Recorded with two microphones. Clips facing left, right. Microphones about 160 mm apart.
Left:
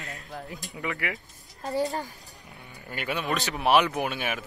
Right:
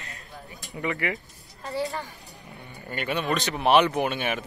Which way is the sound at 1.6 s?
40° left (ahead or behind).